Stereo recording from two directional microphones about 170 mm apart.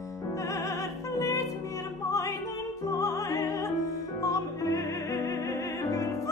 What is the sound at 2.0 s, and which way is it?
Music, 20° left (ahead or behind).